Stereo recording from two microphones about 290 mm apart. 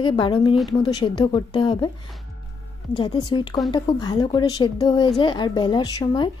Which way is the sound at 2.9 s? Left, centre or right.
Centre.